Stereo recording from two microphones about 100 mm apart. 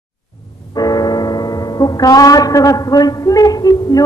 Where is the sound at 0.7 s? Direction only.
40° left (ahead or behind).